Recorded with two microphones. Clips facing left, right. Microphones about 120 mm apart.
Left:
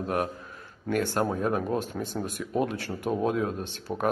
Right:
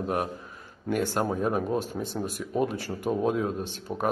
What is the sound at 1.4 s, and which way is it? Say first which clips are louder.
Speech: even; centre (ahead or behind).